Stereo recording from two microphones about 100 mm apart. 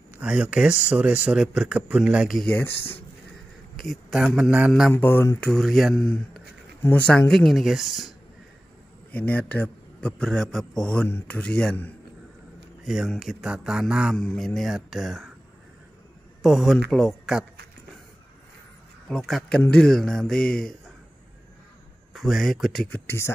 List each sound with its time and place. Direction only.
0.2 s speech: 10° right (ahead or behind)
2.4 s speech: 20° left (ahead or behind)
3.7 s a man's voice: centre (ahead or behind)
4.9 s speech: 25° left (ahead or behind)
5.4 s a man's voice: 5° left (ahead or behind)
7.2 s a man's voice: 10° left (ahead or behind)
9.1 s a man's voice: 15° left (ahead or behind)
12.8 s a man's voice: 5° right (ahead or behind)
14.1 s a man's voice: 5° left (ahead or behind)
16.4 s a man's voice: centre (ahead or behind)
19.0 s a man's voice: 5° left (ahead or behind)
22.1 s a man's voice: centre (ahead or behind)
22.8 s speech: 20° left (ahead or behind)